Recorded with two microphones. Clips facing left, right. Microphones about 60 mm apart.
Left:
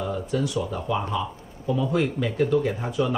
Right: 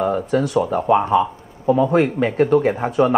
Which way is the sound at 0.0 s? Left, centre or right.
Right.